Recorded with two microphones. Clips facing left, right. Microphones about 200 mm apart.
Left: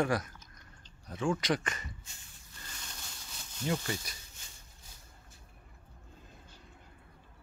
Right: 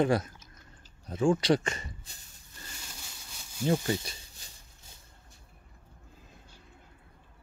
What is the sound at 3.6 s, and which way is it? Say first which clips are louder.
Speech: right 6 dB; 30° right (ahead or behind).